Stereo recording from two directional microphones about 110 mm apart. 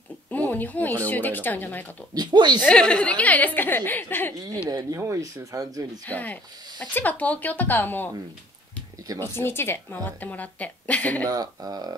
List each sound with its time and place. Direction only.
0.3 s speech: 15° left (ahead or behind)
2.1 s speech: 40° right (ahead or behind)
2.6 s speech: 10° left (ahead or behind)
4.6 s speech: 30° right (ahead or behind)
6.0 s speech: 15° left (ahead or behind)
9.2 s speech: 20° left (ahead or behind)
11.2 s speech: 35° right (ahead or behind)